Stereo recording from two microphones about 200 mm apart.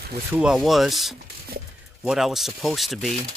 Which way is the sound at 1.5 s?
50° right (ahead or behind).